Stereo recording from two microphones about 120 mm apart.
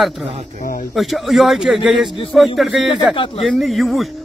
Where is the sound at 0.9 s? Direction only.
Centre (ahead or behind).